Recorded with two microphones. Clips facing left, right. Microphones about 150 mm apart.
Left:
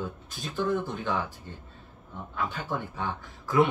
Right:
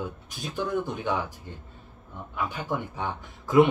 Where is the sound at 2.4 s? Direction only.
15° right (ahead or behind).